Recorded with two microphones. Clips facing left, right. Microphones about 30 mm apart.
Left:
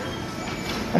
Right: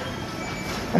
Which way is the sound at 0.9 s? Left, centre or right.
Centre.